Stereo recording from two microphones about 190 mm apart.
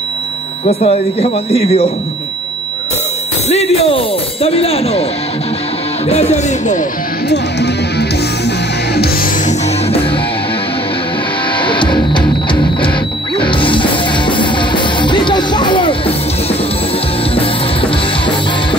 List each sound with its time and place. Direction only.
0.7 s speech: 30° left (ahead or behind)
3.4 s speech: 35° left (ahead or behind)
6.0 s speech: 35° left (ahead or behind)
7.2 s music: 60° left (ahead or behind)
11.6 s music: 25° left (ahead or behind)
17.4 s music: 25° left (ahead or behind)